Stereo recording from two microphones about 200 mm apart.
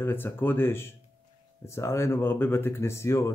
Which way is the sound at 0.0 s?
10° left (ahead or behind).